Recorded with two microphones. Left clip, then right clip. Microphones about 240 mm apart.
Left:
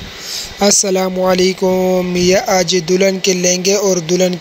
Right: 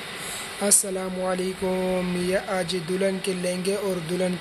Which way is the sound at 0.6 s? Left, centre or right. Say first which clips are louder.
Left 14 dB; left.